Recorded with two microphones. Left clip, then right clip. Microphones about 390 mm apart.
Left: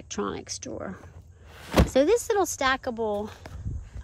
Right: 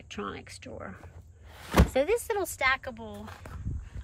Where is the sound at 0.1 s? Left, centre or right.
Centre.